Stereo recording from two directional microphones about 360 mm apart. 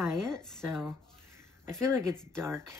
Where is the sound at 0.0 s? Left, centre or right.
Centre.